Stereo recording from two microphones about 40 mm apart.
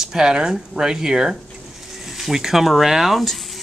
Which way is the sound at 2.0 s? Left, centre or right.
Centre.